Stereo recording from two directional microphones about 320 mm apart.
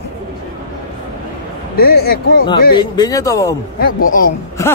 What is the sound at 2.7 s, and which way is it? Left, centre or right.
Speech, centre.